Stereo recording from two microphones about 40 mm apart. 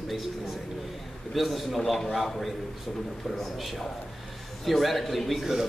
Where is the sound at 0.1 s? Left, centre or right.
Centre.